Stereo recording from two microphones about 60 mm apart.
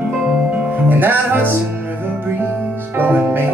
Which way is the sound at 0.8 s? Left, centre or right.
Right.